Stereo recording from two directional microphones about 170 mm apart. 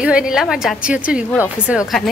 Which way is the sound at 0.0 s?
5° right (ahead or behind).